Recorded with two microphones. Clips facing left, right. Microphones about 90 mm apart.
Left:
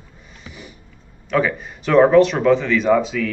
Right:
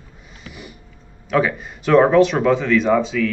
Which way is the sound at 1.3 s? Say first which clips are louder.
Right 1 dB; centre (ahead or behind).